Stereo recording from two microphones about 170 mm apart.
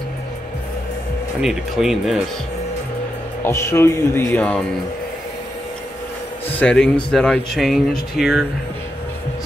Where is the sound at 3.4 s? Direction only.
15° left (ahead or behind).